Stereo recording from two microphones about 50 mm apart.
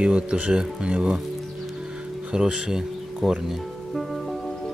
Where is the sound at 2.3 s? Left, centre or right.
Centre.